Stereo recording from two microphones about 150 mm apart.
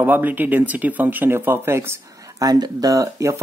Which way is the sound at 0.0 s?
10° right (ahead or behind).